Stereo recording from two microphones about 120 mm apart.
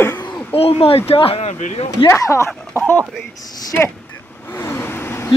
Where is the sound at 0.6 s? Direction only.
50° left (ahead or behind).